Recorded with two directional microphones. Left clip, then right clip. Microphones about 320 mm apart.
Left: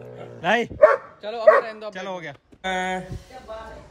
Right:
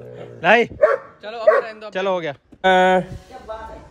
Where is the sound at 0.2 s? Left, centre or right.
Centre.